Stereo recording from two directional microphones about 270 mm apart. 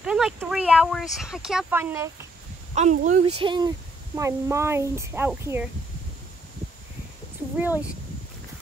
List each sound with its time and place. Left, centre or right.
0.0 s speech: centre
2.7 s speech: right
3.3 s speech: centre
7.5 s speech: centre